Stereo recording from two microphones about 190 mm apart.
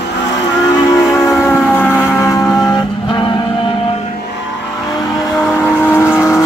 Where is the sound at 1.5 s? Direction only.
15° left (ahead or behind).